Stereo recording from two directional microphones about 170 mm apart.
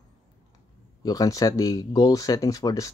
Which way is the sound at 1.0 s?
20° left (ahead or behind).